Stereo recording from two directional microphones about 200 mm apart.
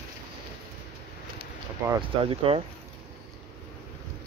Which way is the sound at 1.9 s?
25° right (ahead or behind).